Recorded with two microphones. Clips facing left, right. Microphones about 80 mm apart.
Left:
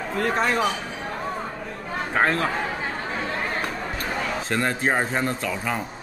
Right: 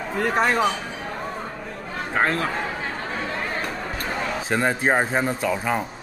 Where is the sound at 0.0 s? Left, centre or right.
Centre.